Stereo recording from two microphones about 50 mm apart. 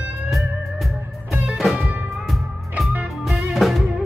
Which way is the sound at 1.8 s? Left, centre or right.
Right.